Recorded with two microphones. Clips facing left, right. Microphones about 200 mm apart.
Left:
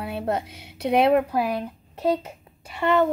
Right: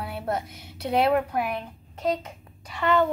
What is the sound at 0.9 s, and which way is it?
Speech, 25° left (ahead or behind).